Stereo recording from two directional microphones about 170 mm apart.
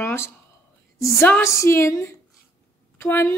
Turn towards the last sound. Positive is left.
turn(degrees=15)  # may be behind; listen again after turning